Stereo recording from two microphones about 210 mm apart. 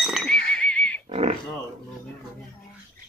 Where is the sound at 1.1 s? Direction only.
30° right (ahead or behind).